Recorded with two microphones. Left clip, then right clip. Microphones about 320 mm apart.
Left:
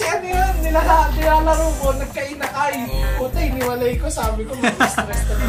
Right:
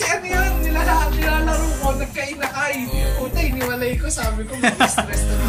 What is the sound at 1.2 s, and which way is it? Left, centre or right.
Music, centre.